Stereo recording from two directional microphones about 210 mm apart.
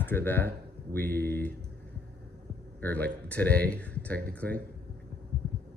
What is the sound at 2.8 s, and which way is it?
Speech, 5° left (ahead or behind).